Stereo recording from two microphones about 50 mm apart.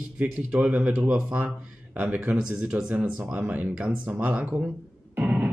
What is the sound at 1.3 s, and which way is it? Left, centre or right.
Speech, right.